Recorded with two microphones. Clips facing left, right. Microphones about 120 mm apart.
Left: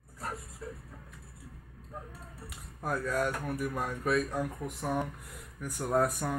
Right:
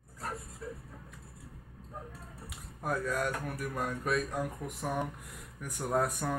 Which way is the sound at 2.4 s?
Centre (ahead or behind).